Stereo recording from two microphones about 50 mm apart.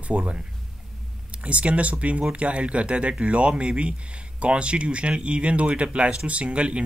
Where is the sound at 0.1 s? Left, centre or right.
Right.